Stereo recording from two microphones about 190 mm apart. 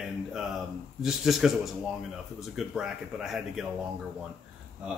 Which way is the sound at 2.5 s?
Centre (ahead or behind).